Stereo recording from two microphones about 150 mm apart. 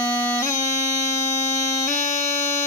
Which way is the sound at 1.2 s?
20° left (ahead or behind).